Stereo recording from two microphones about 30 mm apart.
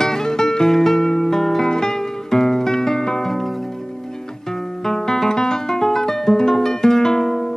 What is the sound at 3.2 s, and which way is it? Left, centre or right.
Music, centre.